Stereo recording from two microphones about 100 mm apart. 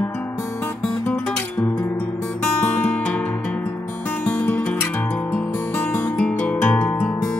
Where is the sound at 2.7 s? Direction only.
15° left (ahead or behind).